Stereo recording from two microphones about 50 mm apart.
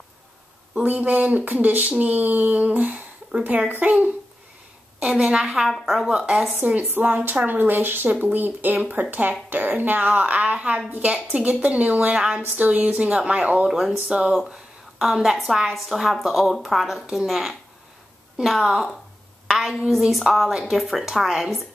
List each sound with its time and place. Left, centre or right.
0.8 s speech: right
5.0 s a woman's voice: centre
6.6 s a woman's voice: right
12.5 s a woman's voice: right
13.7 s a woman's voice: centre
14.0 s a woman's voice: centre
20.1 s a woman's voice: centre